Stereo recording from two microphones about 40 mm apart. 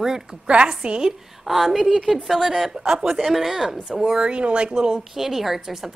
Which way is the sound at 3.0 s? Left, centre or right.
Centre.